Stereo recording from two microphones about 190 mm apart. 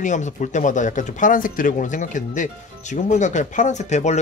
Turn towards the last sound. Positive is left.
turn(degrees=35)  # may be behind; listen again after turning